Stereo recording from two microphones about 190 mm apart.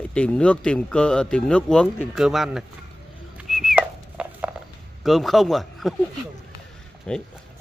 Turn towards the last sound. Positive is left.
turn(degrees=5)  # may be behind; listen again after turning